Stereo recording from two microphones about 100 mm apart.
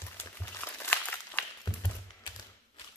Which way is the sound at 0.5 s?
20° left (ahead or behind).